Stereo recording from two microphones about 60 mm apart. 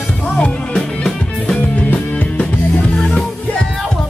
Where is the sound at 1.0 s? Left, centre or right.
Centre.